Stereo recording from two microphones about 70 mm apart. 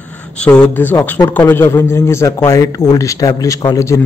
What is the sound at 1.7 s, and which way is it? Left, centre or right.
A man's voice, left.